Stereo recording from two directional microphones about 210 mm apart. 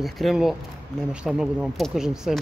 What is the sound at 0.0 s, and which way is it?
Speech, centre (ahead or behind).